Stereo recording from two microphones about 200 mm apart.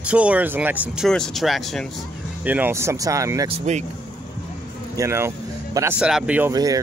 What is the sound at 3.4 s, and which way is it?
Speech, 35° right (ahead or behind).